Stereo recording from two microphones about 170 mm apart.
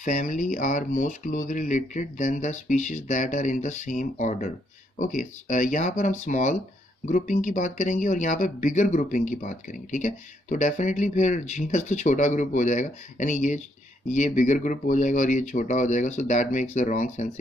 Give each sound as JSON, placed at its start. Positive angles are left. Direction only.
{"t": 0.0, "sound": "speech", "side_deg": 50}